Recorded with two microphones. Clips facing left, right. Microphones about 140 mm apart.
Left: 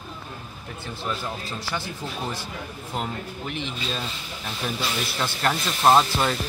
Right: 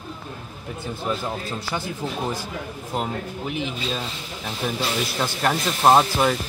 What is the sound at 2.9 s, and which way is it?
Speech, 10° right (ahead or behind).